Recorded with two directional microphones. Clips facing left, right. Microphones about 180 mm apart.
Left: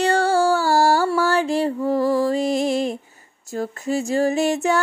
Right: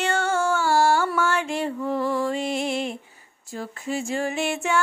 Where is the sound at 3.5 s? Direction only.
40° left (ahead or behind).